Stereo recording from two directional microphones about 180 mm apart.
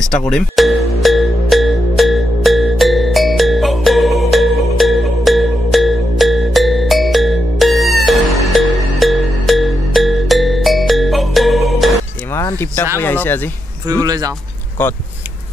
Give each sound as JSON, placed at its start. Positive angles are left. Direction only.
{"t": 0.0, "sound": "music", "side_deg": 5}
{"t": 12.3, "sound": "speech", "side_deg": 15}
{"t": 14.0, "sound": "speech", "side_deg": -20}
{"t": 14.8, "sound": "speech", "side_deg": 10}